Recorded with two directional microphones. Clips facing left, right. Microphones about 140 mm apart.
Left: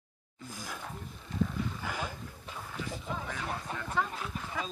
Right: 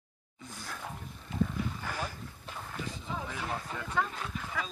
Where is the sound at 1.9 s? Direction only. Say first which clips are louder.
Even; 15° left (ahead or behind).